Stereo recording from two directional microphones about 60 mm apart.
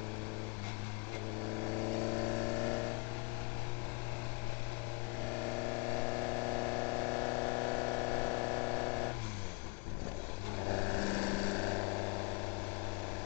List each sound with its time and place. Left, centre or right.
2.0 s vehicle: left
5.9 s pump: left
10.7 s vehicle: left